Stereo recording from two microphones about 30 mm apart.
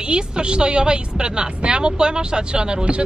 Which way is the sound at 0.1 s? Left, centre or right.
Right.